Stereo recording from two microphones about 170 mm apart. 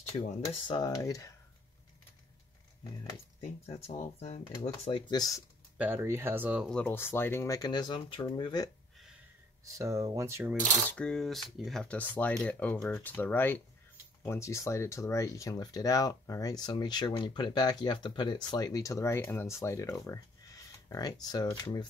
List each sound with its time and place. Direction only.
0.5 s speech: 25° left (ahead or behind)
3.6 s speech: 40° left (ahead or behind)
4.9 s speech: 25° left (ahead or behind)
5.3 s speech: 10° right (ahead or behind)
6.7 s speech: 10° left (ahead or behind); by 8.6 s 25° left (ahead or behind)
9.7 s speech: 20° right (ahead or behind)
10.9 s speech: 5° left (ahead or behind); by 21.8 s 20° left (ahead or behind)